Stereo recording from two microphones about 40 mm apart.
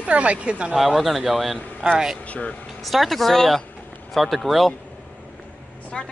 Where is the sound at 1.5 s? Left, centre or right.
Left.